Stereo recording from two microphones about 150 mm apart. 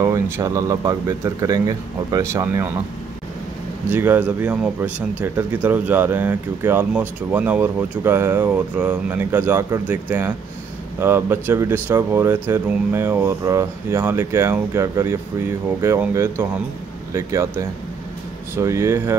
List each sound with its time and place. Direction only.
0.0 s speech: 20° right (ahead or behind)
3.9 s speech: 10° right (ahead or behind)